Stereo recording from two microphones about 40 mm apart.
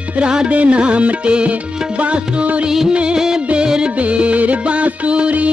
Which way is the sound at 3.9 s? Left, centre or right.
Right.